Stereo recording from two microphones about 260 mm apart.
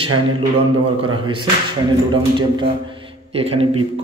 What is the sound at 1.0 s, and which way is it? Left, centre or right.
A man's voice, centre.